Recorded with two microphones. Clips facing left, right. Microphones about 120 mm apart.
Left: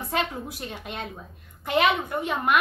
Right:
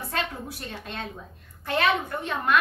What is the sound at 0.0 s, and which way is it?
A woman's voice, 15° left (ahead or behind).